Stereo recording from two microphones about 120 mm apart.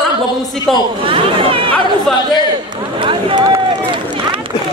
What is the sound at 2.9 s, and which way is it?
Run, 45° right (ahead or behind).